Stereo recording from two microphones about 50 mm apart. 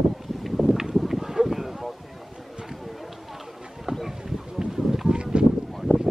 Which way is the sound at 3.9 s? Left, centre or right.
Centre.